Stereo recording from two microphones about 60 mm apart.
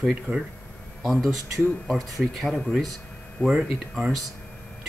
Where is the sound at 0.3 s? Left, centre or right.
Right.